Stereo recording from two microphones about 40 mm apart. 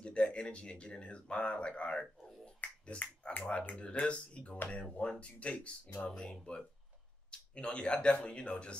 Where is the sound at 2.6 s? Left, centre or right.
Left.